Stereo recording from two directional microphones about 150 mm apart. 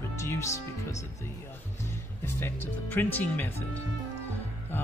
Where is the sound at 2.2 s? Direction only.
15° left (ahead or behind).